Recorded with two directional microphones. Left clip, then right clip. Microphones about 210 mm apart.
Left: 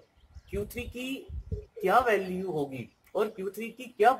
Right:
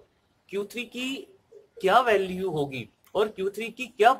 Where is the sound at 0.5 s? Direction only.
15° right (ahead or behind).